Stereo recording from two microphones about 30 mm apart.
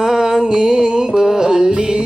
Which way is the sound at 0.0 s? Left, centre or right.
Centre.